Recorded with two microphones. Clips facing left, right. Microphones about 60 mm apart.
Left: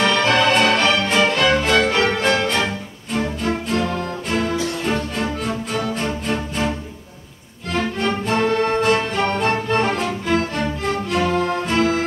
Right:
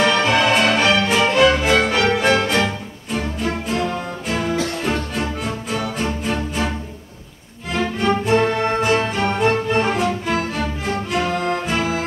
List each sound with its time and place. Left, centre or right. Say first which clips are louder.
0.0 s music: even; centre
4.3 s music: even; centre
7.7 s music: right 2 dB; centre
8.4 s music: even; centre
8.8 s music: even; centre